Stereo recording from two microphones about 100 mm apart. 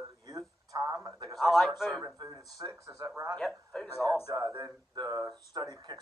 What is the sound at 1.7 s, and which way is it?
Speech, centre (ahead or behind).